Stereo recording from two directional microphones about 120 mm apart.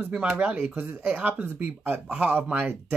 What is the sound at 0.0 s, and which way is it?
Speech, 10° right (ahead or behind).